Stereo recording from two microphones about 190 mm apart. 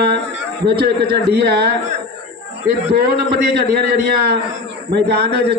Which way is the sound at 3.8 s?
55° right (ahead or behind).